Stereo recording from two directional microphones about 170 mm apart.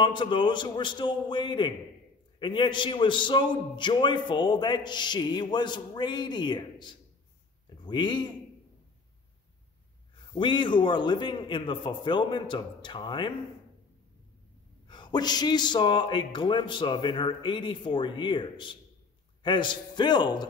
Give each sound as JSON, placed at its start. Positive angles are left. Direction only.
{"t": 0.0, "sound": "a man's voice", "side_deg": 30}
{"t": 10.3, "sound": "a man's voice", "side_deg": 30}
{"t": 14.9, "sound": "a man's voice", "side_deg": 25}